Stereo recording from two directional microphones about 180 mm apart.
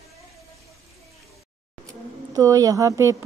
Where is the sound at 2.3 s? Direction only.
20° right (ahead or behind).